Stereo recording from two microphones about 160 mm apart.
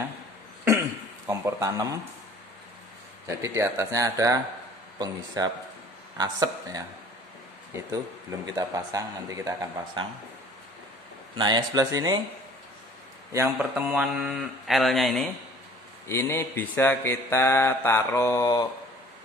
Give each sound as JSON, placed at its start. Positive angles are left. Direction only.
{"t": 0.7, "sound": "cough", "side_deg": -15}
{"t": 3.3, "sound": "speech", "side_deg": -20}
{"t": 10.0, "sound": "speech", "side_deg": -30}
{"t": 11.3, "sound": "speech", "side_deg": -25}
{"t": 13.3, "sound": "speech", "side_deg": -15}
{"t": 16.1, "sound": "mantra", "side_deg": 15}